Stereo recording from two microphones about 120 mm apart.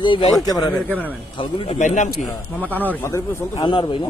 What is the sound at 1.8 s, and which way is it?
Speech, 90° left.